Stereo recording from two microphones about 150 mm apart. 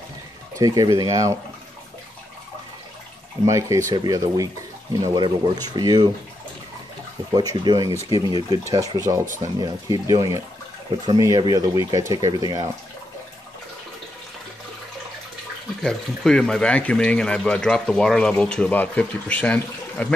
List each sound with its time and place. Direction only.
0.6 s speech: 25° right (ahead or behind)
3.4 s speech: 20° right (ahead or behind)
7.3 s speech: 30° right (ahead or behind)
15.8 s speech: 5° left (ahead or behind)